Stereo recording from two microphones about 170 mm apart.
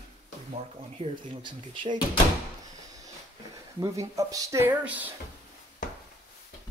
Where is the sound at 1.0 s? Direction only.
30° right (ahead or behind).